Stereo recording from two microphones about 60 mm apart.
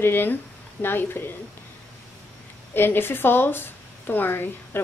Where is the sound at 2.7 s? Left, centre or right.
Left.